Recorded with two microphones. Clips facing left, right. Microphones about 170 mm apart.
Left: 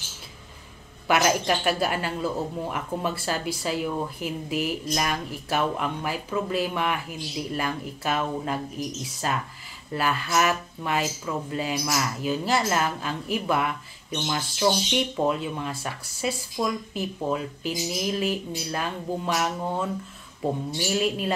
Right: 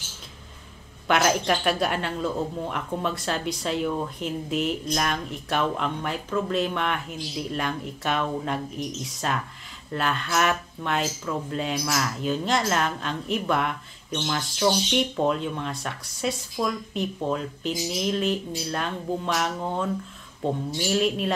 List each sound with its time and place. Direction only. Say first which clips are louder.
1.0 s speech: even; 5° left (ahead or behind)